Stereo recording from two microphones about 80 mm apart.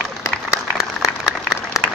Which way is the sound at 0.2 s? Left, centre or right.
Left.